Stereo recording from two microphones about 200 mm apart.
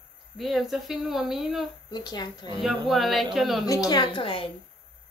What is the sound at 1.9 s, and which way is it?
Speech, 20° left (ahead or behind).